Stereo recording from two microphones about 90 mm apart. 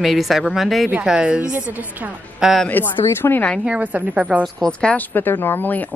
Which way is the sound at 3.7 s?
15° right (ahead or behind).